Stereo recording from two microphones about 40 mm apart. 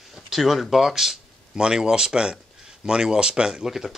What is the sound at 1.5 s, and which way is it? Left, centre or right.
Speech, centre.